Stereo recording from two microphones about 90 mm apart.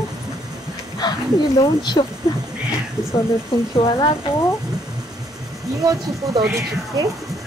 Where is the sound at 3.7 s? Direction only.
90° left.